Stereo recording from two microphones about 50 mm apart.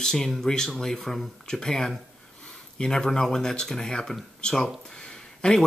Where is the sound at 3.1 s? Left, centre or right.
Centre.